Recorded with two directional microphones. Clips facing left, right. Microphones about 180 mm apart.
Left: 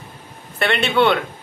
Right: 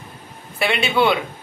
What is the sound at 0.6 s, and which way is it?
Speech, 5° right (ahead or behind).